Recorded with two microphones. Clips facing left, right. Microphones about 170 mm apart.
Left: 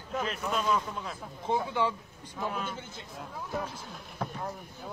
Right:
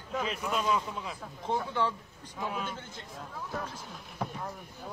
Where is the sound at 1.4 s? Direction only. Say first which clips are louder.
Left 2 dB; 10° left (ahead or behind).